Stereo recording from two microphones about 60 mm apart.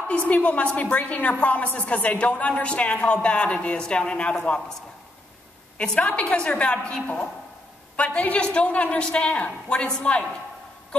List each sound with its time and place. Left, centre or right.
0.3 s a woman's voice: left
5.8 s a woman's voice: centre